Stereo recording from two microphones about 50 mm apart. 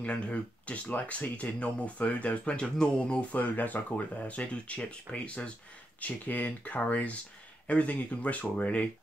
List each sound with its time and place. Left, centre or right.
0.0 s speech: left